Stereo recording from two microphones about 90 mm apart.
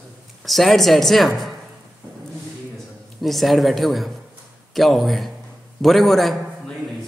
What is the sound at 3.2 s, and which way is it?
A man's voice, centre (ahead or behind).